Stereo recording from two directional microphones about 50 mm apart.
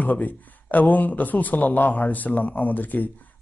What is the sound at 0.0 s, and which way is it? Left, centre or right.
Speech, left.